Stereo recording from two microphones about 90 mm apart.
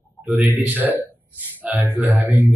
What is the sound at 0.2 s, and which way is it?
A man's voice, 20° right (ahead or behind).